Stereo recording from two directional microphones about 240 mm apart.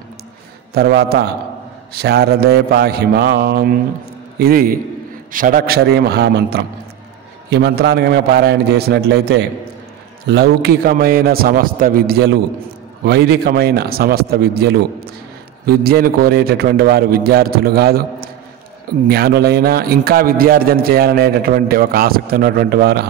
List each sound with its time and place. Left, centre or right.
0.7 s a man's voice: right
19.0 s a man's voice: right